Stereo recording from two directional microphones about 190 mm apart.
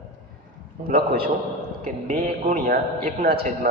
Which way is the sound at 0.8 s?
50° right (ahead or behind).